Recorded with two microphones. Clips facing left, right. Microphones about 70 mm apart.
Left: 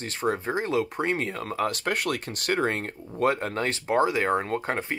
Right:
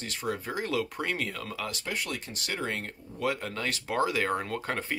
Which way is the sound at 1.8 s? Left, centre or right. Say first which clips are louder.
Left 7 dB; left.